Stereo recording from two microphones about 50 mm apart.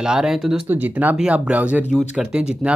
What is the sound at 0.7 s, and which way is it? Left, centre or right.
Speech, right.